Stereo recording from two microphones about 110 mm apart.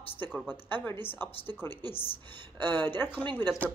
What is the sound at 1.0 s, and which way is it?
Speech, 20° left (ahead or behind).